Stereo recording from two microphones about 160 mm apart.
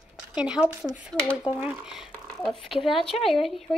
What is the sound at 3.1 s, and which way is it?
Speech, 45° left (ahead or behind).